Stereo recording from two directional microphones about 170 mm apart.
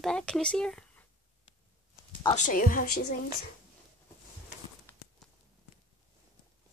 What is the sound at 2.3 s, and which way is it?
Speech, 50° left (ahead or behind).